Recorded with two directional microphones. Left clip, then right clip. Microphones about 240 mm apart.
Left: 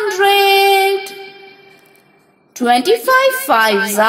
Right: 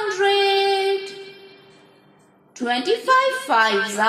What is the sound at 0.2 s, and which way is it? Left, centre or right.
Child singing, left.